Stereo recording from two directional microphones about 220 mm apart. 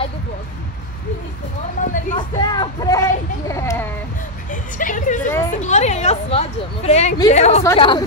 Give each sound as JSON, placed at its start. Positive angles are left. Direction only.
{"t": 1.9, "sound": "a woman's voice", "side_deg": 35}
{"t": 2.1, "sound": "speech", "side_deg": 20}
{"t": 4.5, "sound": "a woman's voice", "side_deg": 35}